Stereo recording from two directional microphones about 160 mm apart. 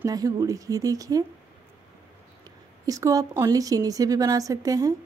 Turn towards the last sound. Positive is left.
turn(degrees=-20)  # may be behind; listen again after turning